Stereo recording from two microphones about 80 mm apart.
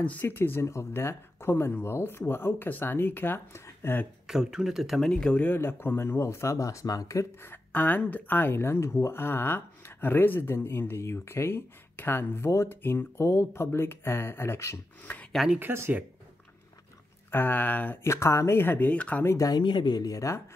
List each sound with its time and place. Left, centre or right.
0.0 s speech: left
4.3 s speech: centre
5.4 s speech: left
15.1 s speech: left
15.6 s speech: right
17.3 s speech: left
18.0 s speech: left; by 19.2 s centre
19.3 s speech: left
19.6 s speech: left